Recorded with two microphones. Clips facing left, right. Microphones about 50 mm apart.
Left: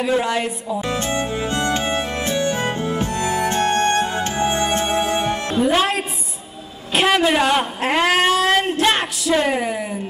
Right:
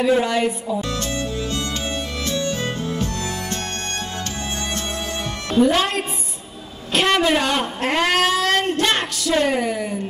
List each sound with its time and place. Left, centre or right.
0.0 s a man's voice: centre
0.7 s music: left
5.6 s a man's voice: centre